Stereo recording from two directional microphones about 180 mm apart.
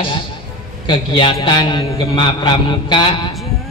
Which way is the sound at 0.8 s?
30° left (ahead or behind).